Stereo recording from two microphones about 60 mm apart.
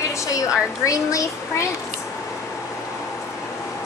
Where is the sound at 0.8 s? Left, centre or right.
Left.